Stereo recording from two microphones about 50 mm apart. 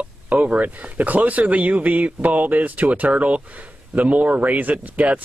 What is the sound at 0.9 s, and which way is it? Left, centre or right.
Speech, right.